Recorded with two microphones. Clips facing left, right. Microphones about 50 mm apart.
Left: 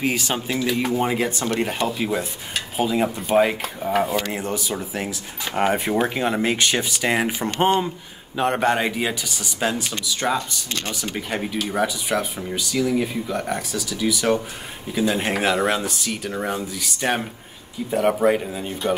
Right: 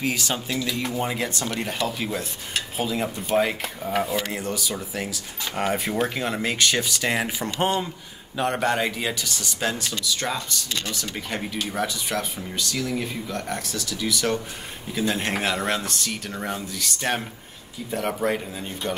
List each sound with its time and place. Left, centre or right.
0.0 s speech: left
4.0 s speech: left
4.3 s speech: left
8.4 s speech: left; by 18.7 s centre